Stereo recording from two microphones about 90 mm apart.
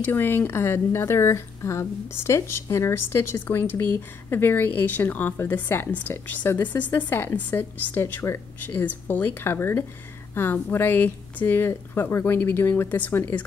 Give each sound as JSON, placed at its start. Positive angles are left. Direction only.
{"t": 0.0, "sound": "a woman's voice", "side_deg": 25}